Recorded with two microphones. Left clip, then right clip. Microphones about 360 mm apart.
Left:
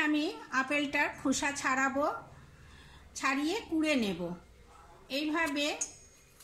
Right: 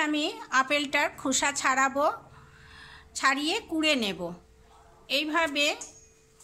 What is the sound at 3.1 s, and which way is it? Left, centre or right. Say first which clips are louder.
A woman's voice: right 6 dB; right.